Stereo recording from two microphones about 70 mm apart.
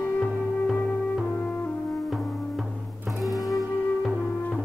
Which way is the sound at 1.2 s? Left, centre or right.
Left.